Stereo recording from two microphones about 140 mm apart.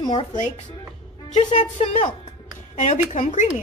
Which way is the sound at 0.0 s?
35° left (ahead or behind).